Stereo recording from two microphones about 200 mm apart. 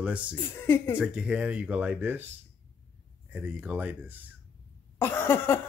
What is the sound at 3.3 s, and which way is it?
Speech, 10° right (ahead or behind).